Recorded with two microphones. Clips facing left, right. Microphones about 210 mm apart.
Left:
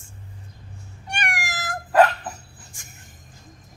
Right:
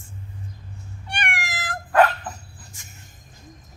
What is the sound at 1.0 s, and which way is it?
Cat, 45° left (ahead or behind).